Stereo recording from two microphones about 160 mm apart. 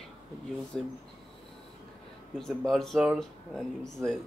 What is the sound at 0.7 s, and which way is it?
Speech, 5° left (ahead or behind).